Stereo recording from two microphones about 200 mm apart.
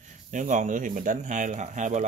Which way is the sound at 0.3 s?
40° right (ahead or behind).